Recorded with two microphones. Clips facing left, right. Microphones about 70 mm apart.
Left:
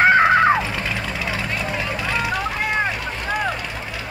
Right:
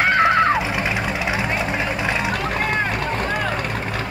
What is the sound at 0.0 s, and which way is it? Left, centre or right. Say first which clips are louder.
Music: left 2 dB; centre.